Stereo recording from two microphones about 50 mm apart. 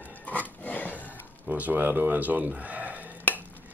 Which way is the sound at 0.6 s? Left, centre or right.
Left.